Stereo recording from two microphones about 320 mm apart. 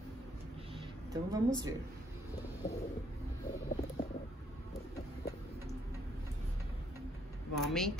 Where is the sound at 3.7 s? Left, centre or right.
Left.